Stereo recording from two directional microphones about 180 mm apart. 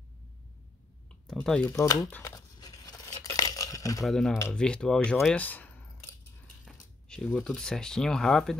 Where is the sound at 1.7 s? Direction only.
15° left (ahead or behind).